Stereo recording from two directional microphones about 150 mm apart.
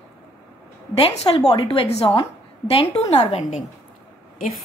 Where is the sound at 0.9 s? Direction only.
40° left (ahead or behind).